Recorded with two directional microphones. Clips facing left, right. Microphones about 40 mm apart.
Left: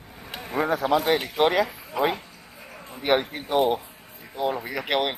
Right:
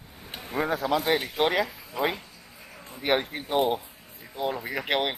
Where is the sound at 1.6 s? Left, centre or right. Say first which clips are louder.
Left 4 dB; left.